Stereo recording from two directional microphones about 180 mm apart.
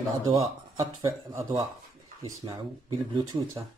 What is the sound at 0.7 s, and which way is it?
Speech, 15° right (ahead or behind).